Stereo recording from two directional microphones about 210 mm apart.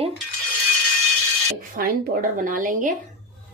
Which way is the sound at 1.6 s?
40° right (ahead or behind).